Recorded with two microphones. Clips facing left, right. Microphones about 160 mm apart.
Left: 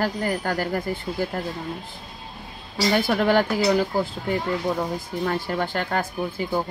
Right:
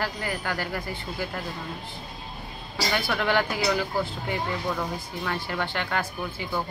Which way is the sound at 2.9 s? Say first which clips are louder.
Left 6 dB; 40° left (ahead or behind).